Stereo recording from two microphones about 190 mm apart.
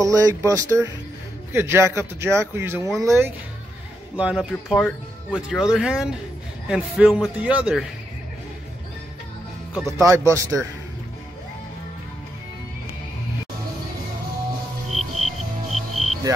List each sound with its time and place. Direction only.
0.0 s speech: 15° right (ahead or behind)
4.2 s speech: 5° right (ahead or behind)
9.9 s speech: 15° right (ahead or behind)
15.0 s music: centre (ahead or behind)